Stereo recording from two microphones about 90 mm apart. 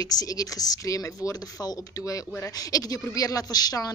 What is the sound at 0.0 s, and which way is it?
A woman's voice, 45° left (ahead or behind).